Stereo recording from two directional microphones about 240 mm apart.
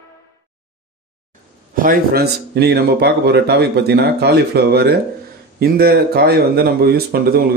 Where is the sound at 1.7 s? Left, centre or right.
Right.